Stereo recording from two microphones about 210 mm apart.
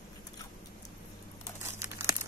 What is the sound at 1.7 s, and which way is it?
Crumpling, 10° right (ahead or behind).